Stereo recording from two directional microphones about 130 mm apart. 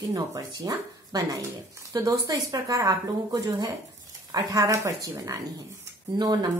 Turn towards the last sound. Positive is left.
turn(degrees=-30)  # may be behind; listen again after turning